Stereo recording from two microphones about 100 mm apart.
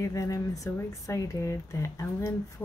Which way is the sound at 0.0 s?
35° left (ahead or behind).